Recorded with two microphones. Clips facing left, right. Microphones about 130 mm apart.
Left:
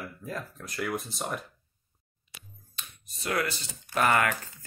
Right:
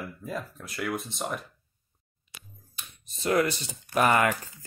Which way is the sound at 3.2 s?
25° right (ahead or behind).